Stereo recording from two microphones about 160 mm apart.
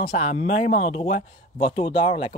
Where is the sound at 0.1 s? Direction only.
45° left (ahead or behind).